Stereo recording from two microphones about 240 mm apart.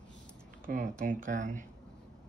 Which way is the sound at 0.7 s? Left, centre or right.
Right.